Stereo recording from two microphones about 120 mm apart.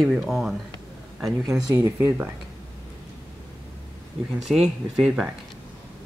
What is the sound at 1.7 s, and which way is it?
Speech, 25° right (ahead or behind).